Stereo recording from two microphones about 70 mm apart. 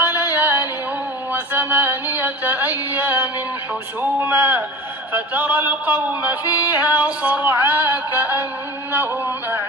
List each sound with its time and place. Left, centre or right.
0.0 s music: left
0.3 s music: right
4.2 s speech: right
5.1 s female singing: right
6.6 s female singing: left
6.9 s female singing: right
8.9 s speech: right